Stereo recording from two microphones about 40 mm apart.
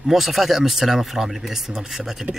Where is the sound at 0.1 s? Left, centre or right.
Centre.